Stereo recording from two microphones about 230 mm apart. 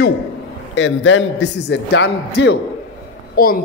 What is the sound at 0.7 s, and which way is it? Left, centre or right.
A man's voice, left.